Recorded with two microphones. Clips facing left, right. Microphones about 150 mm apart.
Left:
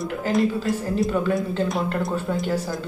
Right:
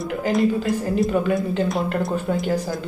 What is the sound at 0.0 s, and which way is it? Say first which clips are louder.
Speech: right 2 dB; centre (ahead or behind).